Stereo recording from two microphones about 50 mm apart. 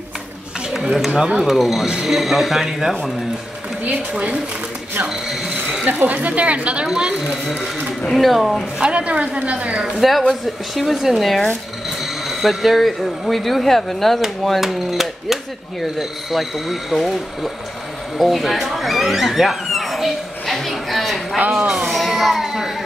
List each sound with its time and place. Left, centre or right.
0.9 s speech: centre
5.9 s a woman's voice: right; by 7.3 s centre
8.0 s speech: centre
8.8 s a woman's voice: right
9.9 s speech: centre
20.5 s a sound: centre